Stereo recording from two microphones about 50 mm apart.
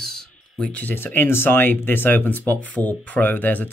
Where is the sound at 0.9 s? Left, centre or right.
Left.